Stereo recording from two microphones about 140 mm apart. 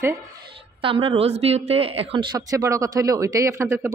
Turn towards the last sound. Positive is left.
turn(degrees=-20)  # may be behind; listen again after turning